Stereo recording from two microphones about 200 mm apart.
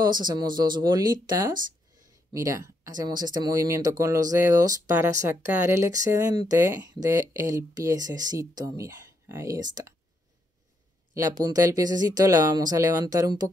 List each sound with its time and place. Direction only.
0.0 s speech: 20° right (ahead or behind)
11.1 s speech: 20° right (ahead or behind)